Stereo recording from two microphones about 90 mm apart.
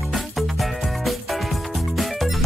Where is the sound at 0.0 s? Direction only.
Centre (ahead or behind).